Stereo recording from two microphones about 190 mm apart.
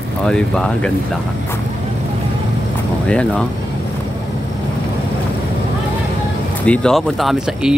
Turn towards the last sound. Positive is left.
turn(degrees=0)  # may be behind; listen again after turning